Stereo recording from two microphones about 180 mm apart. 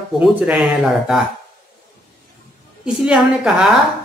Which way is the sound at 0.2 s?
Centre (ahead or behind).